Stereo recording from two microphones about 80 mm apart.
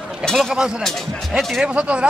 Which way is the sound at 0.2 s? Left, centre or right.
Centre.